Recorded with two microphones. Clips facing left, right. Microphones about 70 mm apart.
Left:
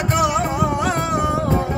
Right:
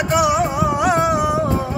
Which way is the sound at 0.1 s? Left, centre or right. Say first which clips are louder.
Right 2 dB; centre.